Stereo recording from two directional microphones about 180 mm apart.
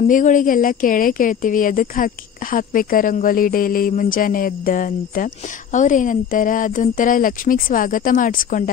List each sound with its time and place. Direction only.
0.0 s a woman's voice: 45° left (ahead or behind)